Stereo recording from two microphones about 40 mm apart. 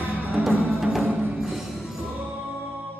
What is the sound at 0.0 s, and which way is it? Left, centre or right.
Music, right.